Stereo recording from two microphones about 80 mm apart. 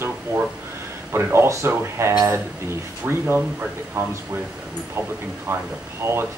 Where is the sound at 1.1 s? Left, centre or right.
Right.